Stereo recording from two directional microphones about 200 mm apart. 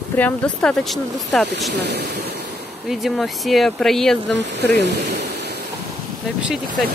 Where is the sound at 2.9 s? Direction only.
Centre (ahead or behind).